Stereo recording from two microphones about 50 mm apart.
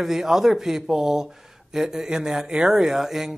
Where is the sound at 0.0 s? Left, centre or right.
Centre.